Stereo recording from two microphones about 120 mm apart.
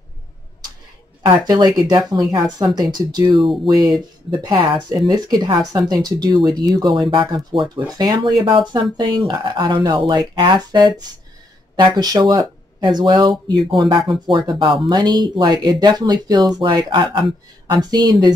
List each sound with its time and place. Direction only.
1.2 s speech: 35° right (ahead or behind)
6.4 s speech: centre (ahead or behind)
6.7 s speech: 35° right (ahead or behind)